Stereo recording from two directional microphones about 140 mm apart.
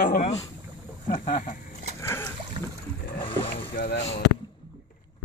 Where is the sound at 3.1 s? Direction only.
40° left (ahead or behind).